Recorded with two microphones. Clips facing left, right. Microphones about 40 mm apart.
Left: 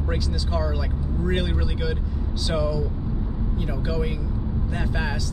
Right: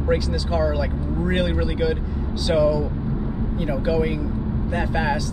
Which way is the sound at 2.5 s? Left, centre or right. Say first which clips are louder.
Right 7 dB; centre.